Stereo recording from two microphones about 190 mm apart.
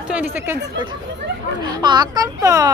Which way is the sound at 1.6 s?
20° right (ahead or behind).